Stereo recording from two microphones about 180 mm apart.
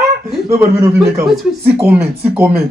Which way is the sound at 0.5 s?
15° right (ahead or behind).